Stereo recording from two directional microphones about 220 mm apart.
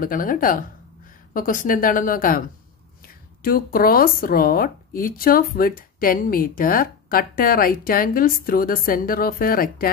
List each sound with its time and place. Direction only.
0.0 s speech: 40° left (ahead or behind)